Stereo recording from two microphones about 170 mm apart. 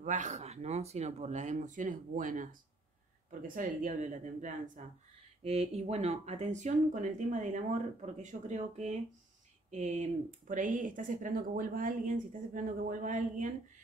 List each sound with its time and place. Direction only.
0.0 s speech: 45° right (ahead or behind)